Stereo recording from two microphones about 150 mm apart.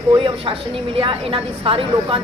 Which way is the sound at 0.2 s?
35° right (ahead or behind).